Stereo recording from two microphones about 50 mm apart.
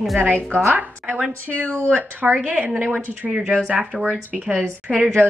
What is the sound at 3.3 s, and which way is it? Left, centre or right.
Speech, centre.